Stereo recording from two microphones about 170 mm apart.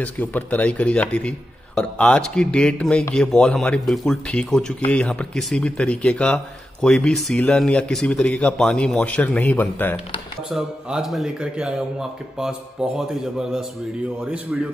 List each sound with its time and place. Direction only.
0.0 s speech: 10° left (ahead or behind)
10.5 s speech: centre (ahead or behind)